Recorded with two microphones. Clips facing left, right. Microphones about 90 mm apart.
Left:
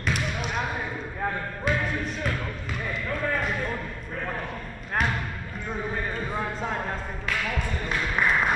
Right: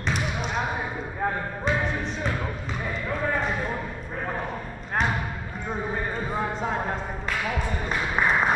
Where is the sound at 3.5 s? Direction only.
15° right (ahead or behind).